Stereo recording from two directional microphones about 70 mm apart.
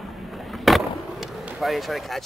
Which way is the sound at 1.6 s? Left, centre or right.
Centre.